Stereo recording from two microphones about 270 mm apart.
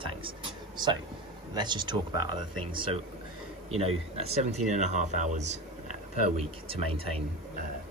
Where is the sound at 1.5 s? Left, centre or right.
Centre.